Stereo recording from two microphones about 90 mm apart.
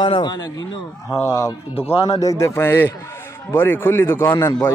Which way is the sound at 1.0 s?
35° left (ahead or behind).